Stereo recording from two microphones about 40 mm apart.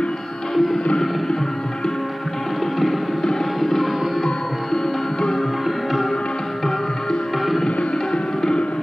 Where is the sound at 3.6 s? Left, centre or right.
Centre.